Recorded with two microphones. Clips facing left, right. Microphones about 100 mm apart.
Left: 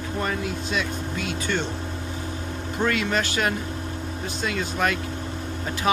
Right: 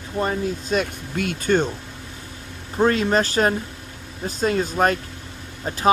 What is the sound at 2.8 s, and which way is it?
Speech, 35° right (ahead or behind).